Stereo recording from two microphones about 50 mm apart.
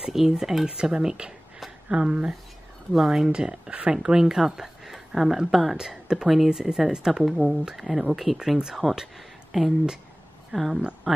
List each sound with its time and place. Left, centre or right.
0.0 s speech: centre
2.9 s speech: centre